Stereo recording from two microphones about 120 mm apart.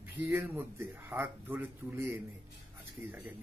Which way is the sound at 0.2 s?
20° right (ahead or behind).